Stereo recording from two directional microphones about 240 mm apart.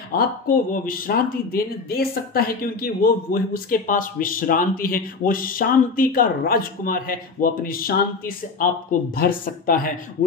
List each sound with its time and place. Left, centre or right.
0.1 s speech: left